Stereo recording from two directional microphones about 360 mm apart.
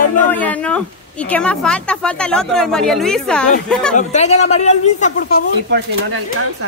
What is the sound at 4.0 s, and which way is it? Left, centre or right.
Speech, centre.